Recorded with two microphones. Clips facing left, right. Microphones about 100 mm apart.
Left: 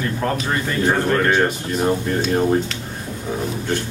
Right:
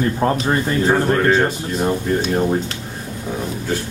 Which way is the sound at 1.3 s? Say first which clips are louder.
Right 1 dB; centre (ahead or behind).